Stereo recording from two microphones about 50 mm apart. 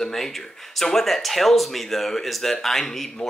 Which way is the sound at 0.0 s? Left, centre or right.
Centre.